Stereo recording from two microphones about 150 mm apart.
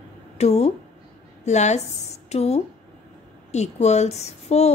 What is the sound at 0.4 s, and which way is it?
A woman's voice, 45° left (ahead or behind).